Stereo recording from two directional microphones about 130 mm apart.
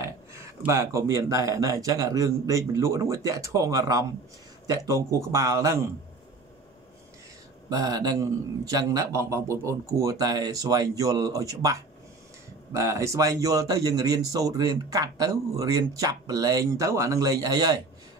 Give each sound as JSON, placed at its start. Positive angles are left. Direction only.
{"t": 0.0, "sound": "a sound", "side_deg": -20}
{"t": 0.7, "sound": "speech", "side_deg": -25}
{"t": 7.7, "sound": "speech", "side_deg": -30}